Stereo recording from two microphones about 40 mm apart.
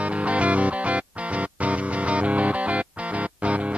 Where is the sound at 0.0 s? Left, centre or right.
Right.